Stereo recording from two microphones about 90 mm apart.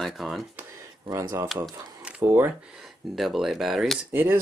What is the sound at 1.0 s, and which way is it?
Speech, 40° right (ahead or behind).